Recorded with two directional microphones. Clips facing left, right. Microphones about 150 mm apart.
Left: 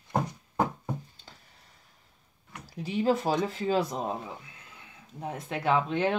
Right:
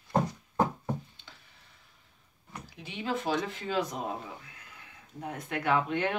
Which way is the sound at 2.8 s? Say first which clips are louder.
Left 6 dB; 40° left (ahead or behind).